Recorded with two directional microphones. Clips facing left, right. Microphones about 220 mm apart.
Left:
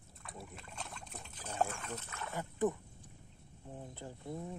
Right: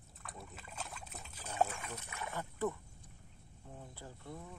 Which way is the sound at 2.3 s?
15° left (ahead or behind).